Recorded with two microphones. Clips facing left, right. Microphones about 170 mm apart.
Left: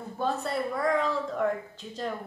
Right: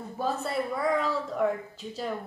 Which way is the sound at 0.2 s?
Centre (ahead or behind).